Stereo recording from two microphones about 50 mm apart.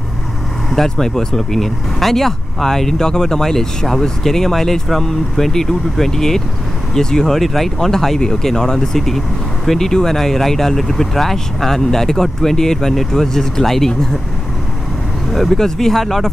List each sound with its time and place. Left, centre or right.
0.8 s speech: centre
15.3 s speech: centre